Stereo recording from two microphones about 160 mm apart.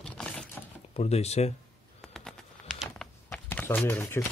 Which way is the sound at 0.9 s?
40° left (ahead or behind).